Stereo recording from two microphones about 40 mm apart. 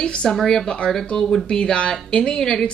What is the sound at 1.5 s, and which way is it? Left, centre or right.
A woman's voice, left.